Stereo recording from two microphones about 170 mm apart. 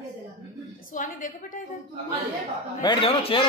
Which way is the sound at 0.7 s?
55° left (ahead or behind).